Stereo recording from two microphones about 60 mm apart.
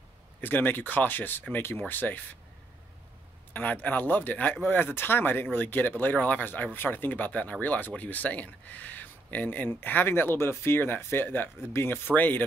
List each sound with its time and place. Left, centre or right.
0.4 s speech: left
3.5 s speech: left